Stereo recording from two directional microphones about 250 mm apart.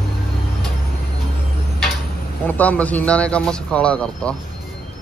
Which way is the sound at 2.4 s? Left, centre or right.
Centre.